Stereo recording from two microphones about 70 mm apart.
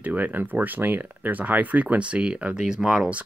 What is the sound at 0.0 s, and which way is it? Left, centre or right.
Speech, right.